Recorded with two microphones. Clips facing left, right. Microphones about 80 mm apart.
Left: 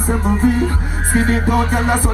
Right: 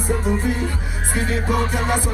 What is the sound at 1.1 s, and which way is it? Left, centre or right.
Music, left.